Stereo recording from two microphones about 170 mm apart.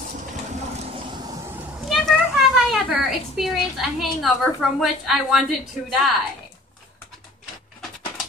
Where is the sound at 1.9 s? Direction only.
Centre (ahead or behind).